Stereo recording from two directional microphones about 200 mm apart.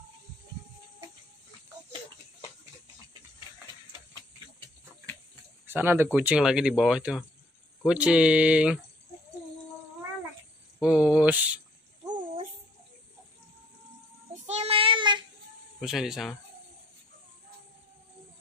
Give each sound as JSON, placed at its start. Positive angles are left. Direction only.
{"t": 5.7, "sound": "speech", "side_deg": -10}
{"t": 10.8, "sound": "speech", "side_deg": -5}
{"t": 14.4, "sound": "child singing", "side_deg": -30}
{"t": 15.8, "sound": "speech", "side_deg": 0}